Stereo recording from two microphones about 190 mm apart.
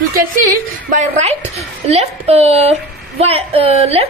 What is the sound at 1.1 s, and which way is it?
A woman's voice, 35° right (ahead or behind).